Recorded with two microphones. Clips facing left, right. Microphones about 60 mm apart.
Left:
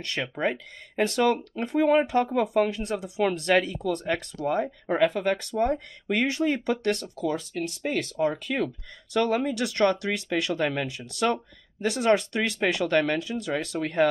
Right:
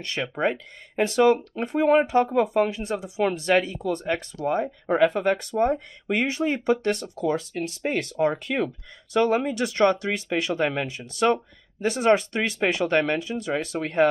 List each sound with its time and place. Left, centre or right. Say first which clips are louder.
0.3 s speech: right 4 dB; right
2.6 s speech: right 1 dB; centre
4.4 s speech: right 2 dB; centre
4.8 s speech: right 3 dB; right
5.7 s speech: right 2 dB; centre